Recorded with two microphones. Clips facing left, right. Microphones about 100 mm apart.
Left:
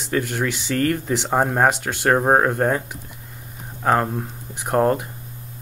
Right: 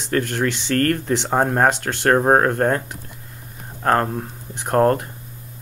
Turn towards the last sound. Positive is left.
turn(degrees=10)  # may be behind; listen again after turning